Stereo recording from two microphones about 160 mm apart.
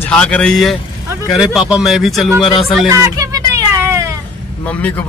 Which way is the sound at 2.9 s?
20° right (ahead or behind).